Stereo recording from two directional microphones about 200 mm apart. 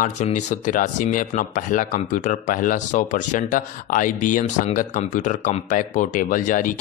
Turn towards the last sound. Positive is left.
turn(degrees=40)  # may be behind; listen again after turning